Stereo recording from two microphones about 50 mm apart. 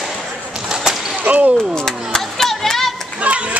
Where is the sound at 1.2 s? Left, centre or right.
Right.